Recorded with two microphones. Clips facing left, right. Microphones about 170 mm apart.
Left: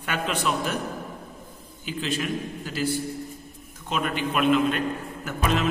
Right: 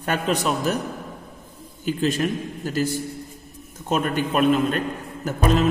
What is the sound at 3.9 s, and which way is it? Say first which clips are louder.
A man's voice: right 4 dB; 45° right (ahead or behind).